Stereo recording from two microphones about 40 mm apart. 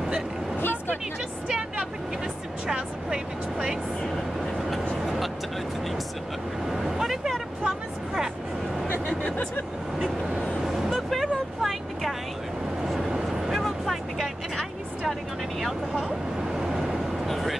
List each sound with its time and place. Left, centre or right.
0.6 s vehicle: left
2.7 s vehicle: right
4.6 s a sound: centre
5.0 s vehicle: centre
6.7 s vehicle: centre
9.0 s a sound: left
10.6 s vehicle: centre
11.0 s vehicle: centre
13.1 s vehicle: centre
16.5 s vehicle: centre
17.3 s vehicle: centre